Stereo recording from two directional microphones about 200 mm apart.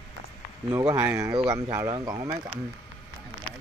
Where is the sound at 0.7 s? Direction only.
15° right (ahead or behind).